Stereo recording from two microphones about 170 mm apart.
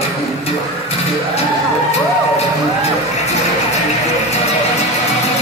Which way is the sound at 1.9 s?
40° left (ahead or behind).